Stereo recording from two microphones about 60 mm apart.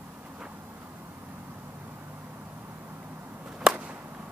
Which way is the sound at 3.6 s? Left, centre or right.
Centre.